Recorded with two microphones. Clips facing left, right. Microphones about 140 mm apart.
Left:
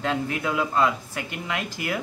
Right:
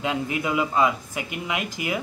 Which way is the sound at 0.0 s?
10° right (ahead or behind).